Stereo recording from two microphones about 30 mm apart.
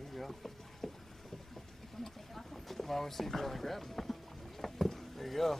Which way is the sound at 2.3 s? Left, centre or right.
Centre.